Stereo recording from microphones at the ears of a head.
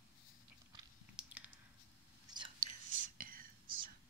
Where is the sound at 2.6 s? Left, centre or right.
Right.